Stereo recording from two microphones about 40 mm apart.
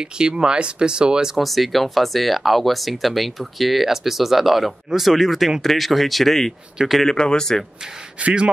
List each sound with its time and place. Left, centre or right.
0.0 s speech: centre
1.4 s speech: centre
7.1 s speech: centre
8.2 s speech: right